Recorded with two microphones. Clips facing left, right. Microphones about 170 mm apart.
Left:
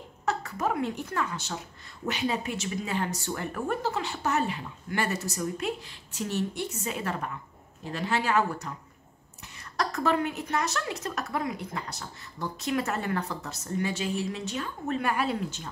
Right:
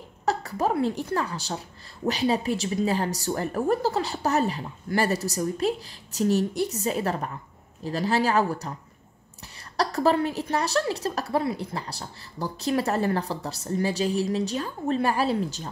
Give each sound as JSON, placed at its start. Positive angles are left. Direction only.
{"t": 0.2, "sound": "a woman's voice", "side_deg": -35}
{"t": 9.8, "sound": "a woman's voice", "side_deg": -35}